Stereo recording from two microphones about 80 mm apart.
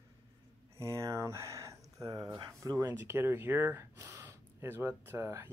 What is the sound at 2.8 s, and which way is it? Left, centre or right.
Speech, right.